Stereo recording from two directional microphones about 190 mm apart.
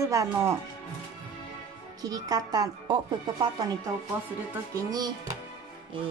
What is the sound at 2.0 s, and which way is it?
Speech, 20° right (ahead or behind).